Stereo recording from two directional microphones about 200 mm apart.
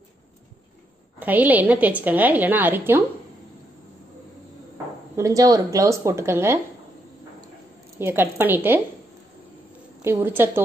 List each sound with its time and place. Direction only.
1.2 s a woman's voice: 10° right (ahead or behind)
5.1 s a woman's voice: 15° right (ahead or behind)
8.0 s a woman's voice: 10° right (ahead or behind)
10.0 s a woman's voice: 10° right (ahead or behind)